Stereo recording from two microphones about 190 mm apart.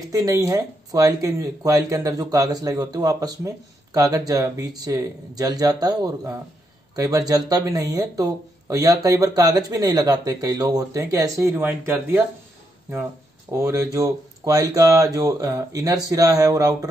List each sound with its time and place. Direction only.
0.1 s speech: 15° right (ahead or behind)
13.5 s speech: 15° right (ahead or behind)